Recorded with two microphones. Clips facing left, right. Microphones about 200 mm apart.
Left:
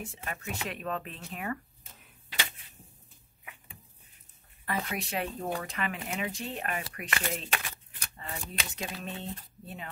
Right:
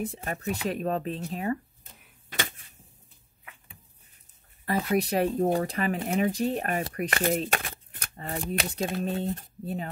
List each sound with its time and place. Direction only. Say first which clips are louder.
0.0 s speech: right 8 dB; 40° right (ahead or behind)
2.2 s a sound: right 5 dB; 45° right (ahead or behind)
4.9 s speech: right 10 dB; 40° right (ahead or behind)
8.4 s speech: right 11 dB; 60° right (ahead or behind)
8.6 s speech: right 9 dB; 35° right (ahead or behind)